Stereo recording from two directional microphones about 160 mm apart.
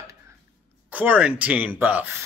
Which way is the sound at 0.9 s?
10° right (ahead or behind).